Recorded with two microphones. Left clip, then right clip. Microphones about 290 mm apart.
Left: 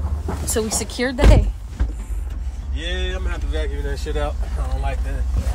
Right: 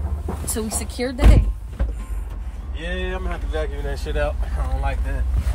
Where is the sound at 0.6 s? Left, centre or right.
Centre.